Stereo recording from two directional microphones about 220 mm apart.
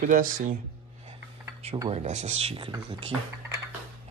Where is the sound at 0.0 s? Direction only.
35° right (ahead or behind).